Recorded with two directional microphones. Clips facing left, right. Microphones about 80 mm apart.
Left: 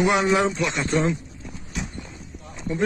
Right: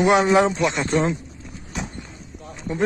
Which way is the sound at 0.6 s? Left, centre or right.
Right.